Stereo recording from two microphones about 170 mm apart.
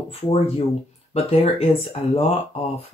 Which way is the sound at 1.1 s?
35° left (ahead or behind).